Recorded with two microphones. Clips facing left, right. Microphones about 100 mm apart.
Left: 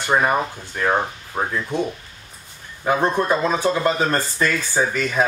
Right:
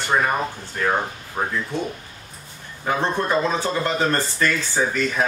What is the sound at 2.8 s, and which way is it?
Speech, 15° left (ahead or behind).